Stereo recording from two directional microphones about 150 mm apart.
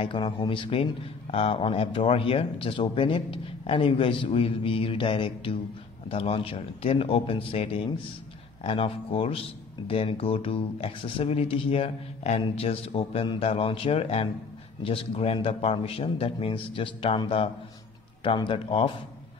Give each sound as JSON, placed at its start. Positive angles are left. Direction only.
{"t": 0.0, "sound": "speech", "side_deg": 30}